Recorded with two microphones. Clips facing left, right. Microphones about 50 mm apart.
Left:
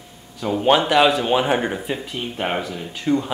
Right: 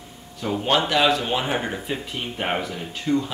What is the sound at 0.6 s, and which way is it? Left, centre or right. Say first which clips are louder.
Speech: left 5 dB; centre.